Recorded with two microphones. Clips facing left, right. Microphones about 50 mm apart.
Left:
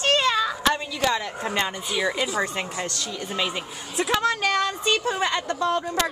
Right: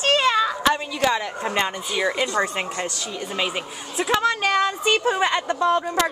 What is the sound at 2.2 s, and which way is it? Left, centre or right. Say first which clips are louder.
Speech: right 3 dB; centre.